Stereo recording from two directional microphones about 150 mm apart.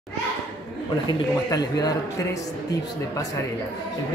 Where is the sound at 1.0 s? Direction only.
25° left (ahead or behind).